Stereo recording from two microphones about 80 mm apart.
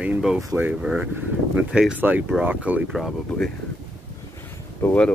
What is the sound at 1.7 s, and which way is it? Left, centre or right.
Speech, centre.